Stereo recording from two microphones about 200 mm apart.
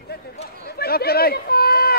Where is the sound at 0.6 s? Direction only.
50° left (ahead or behind).